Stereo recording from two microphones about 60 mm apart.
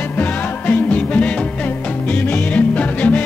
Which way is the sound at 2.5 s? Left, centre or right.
Left.